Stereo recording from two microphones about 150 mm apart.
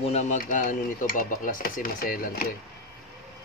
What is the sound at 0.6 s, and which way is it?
Speech, 65° left (ahead or behind).